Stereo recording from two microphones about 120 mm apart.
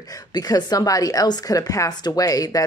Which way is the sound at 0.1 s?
30° left (ahead or behind).